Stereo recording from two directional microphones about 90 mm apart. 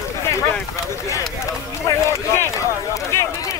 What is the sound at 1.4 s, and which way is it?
Speech, 35° left (ahead or behind).